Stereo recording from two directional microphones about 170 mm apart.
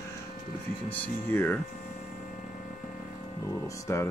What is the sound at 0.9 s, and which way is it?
Speech, 10° left (ahead or behind).